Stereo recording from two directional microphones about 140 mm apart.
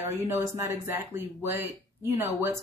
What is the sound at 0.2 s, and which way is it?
Speech, 20° right (ahead or behind).